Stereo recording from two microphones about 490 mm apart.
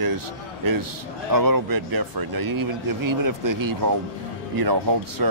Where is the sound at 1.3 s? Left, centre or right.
Right.